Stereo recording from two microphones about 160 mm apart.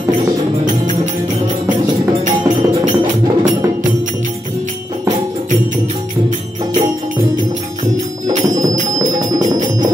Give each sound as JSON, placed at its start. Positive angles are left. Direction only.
{"t": 2.2, "sound": "music", "side_deg": -50}